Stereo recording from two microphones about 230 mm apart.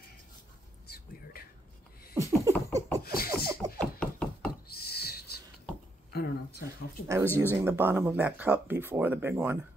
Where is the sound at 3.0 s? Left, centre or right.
Left.